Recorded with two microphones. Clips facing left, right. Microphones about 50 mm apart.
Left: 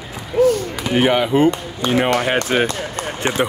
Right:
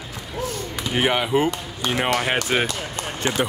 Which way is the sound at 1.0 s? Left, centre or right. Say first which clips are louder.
Left 5 dB; centre.